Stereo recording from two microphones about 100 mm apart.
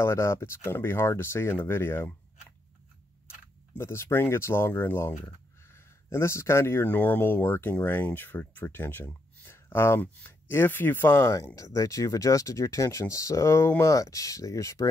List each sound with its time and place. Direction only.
0.0 s speech: 25° left (ahead or behind)
3.7 s speech: 25° left (ahead or behind)